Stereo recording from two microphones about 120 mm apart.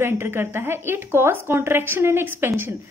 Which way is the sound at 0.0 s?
20° right (ahead or behind).